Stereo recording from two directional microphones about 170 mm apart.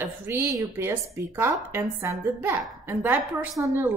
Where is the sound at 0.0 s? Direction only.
20° right (ahead or behind).